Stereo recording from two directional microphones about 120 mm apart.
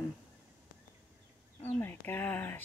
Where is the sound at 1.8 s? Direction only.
20° left (ahead or behind).